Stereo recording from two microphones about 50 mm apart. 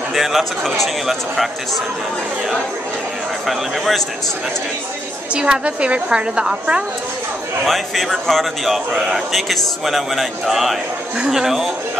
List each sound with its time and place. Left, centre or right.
0.1 s speech: centre
3.4 s speech: centre
5.3 s a woman's voice: centre
7.6 s a man's voice: centre